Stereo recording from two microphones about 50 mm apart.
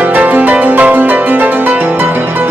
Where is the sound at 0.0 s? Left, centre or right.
Right.